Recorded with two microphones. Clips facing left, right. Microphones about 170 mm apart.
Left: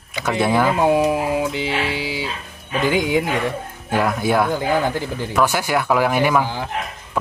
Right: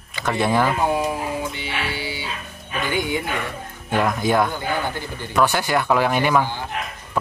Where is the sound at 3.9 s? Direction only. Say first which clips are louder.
Left 1 dB; 5° left (ahead or behind).